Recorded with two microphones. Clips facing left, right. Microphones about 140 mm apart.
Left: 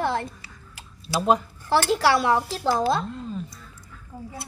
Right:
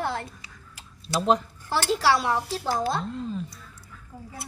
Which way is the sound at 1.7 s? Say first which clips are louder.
Left 3 dB; 65° left (ahead or behind).